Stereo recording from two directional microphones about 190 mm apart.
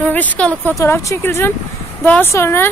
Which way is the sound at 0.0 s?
10° left (ahead or behind).